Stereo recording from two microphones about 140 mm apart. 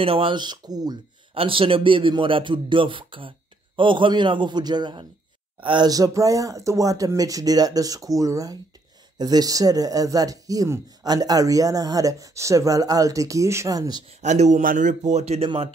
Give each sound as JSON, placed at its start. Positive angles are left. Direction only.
{"t": 0.0, "sound": "speech", "side_deg": -40}
{"t": 1.3, "sound": "speech", "side_deg": -40}
{"t": 14.2, "sound": "speech", "side_deg": -55}
{"t": 14.6, "sound": "speech", "side_deg": -75}